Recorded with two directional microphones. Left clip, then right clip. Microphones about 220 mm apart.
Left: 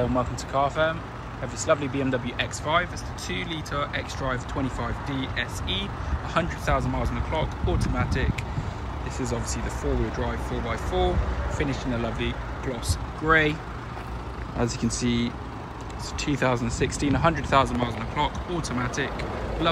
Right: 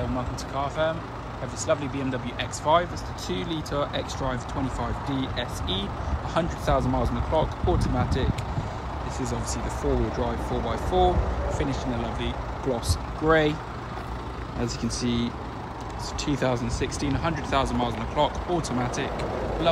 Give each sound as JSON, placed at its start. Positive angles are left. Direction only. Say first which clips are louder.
{"t": 0.6, "sound": "speech", "louder": "left 3 dB", "side_deg": -10}
{"t": 10.1, "sound": "speech", "louder": "right 2 dB", "side_deg": -15}
{"t": 14.6, "sound": "speech", "louder": "left 3 dB", "side_deg": -5}